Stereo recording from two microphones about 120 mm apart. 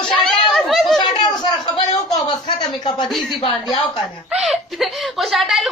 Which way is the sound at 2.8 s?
40° left (ahead or behind).